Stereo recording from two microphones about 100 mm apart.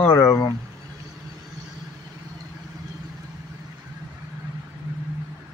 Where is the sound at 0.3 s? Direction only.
40° left (ahead or behind).